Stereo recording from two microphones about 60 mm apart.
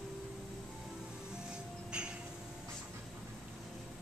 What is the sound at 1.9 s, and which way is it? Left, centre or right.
Vehicle, centre.